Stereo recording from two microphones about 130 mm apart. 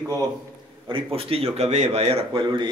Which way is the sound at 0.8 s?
45° right (ahead or behind).